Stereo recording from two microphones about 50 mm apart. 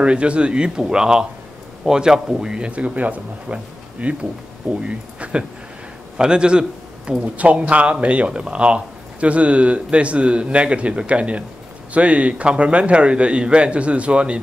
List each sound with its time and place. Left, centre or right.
0.0 s speech: right